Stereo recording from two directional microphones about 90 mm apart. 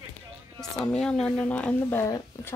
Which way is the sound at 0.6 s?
10° left (ahead or behind).